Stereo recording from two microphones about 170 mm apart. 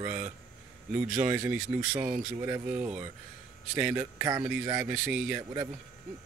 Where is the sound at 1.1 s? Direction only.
10° right (ahead or behind).